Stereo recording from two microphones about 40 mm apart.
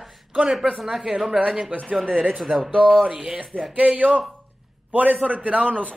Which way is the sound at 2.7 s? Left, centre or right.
Left.